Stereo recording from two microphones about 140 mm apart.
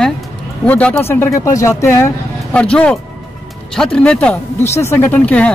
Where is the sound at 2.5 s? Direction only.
10° left (ahead or behind).